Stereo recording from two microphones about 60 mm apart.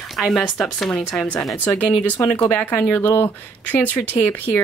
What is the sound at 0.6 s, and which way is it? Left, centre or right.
Speech, centre.